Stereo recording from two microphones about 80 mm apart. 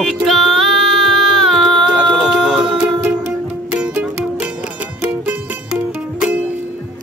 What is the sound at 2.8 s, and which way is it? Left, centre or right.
Music, centre.